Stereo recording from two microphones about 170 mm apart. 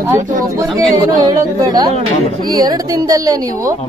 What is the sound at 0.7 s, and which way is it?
Speech, 20° right (ahead or behind).